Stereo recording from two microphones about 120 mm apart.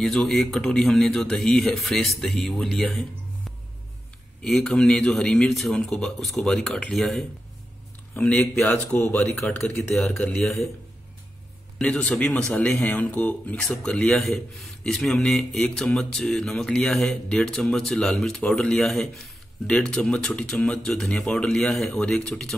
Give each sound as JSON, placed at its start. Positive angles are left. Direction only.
{"t": 0.0, "sound": "a man's voice", "side_deg": 5}
{"t": 8.6, "sound": "speech", "side_deg": 20}
{"t": 9.6, "sound": "a man's voice", "side_deg": 5}
{"t": 11.8, "sound": "a man's voice", "side_deg": 10}